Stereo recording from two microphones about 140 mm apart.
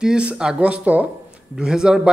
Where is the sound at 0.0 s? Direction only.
5° right (ahead or behind).